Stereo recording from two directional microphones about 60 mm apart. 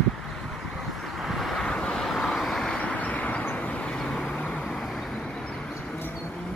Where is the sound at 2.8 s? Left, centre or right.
Left.